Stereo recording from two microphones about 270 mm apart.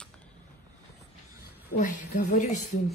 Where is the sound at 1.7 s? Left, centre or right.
Left.